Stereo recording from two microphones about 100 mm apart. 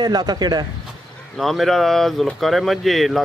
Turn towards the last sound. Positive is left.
turn(degrees=0)  # may be behind; listen again after turning